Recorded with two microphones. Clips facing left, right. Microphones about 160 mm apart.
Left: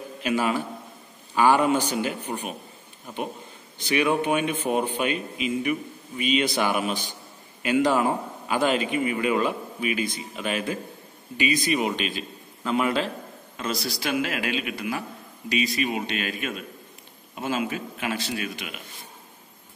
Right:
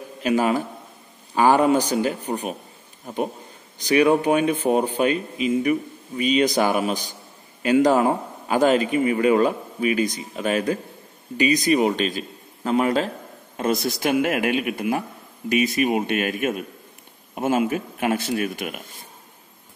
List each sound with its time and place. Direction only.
0.2 s speech: 35° right (ahead or behind)
3.8 s speech: 35° right (ahead or behind)
13.8 s a man's voice: 50° right (ahead or behind)